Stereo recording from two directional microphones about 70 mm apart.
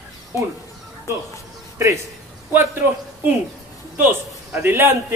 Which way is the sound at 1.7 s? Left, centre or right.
Right.